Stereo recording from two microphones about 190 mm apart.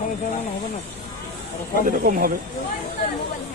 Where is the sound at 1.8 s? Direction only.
45° right (ahead or behind).